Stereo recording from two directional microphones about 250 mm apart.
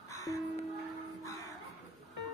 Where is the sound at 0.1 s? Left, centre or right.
Centre.